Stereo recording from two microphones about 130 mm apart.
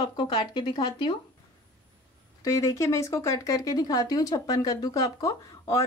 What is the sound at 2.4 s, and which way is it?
Speech, 25° left (ahead or behind).